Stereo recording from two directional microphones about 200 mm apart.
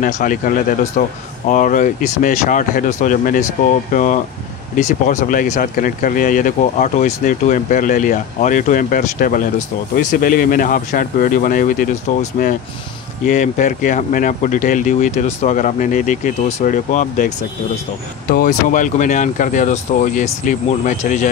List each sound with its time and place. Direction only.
0.0 s speech: 45° left (ahead or behind)
18.3 s speech: 45° left (ahead or behind)